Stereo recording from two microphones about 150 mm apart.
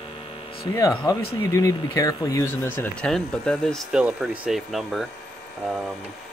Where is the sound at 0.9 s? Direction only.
30° left (ahead or behind); by 5.9 s centre (ahead or behind).